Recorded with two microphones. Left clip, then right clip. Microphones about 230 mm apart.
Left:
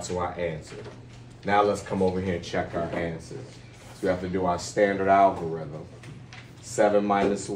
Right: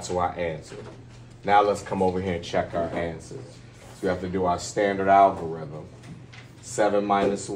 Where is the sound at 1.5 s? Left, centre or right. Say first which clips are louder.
Right 3 dB; right.